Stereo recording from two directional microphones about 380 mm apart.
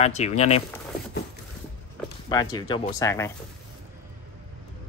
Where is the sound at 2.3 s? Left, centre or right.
Centre.